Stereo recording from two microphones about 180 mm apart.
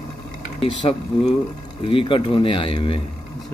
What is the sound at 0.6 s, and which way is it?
Speech, 30° left (ahead or behind).